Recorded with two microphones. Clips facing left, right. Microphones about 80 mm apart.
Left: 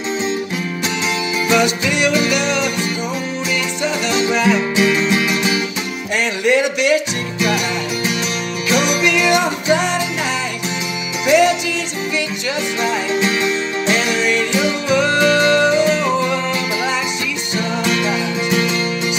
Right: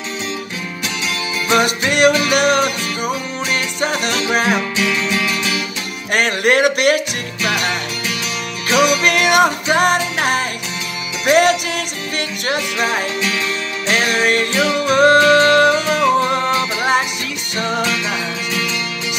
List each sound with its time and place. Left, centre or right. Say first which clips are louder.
1.5 s music: right 1 dB; right
4.3 s music: even; right
4.7 s music: left 3 dB; left
6.1 s speech: right 1 dB; right
8.7 s music: right 4 dB; centre
9.0 s music: right 2 dB; right
13.8 s music: right 2 dB; right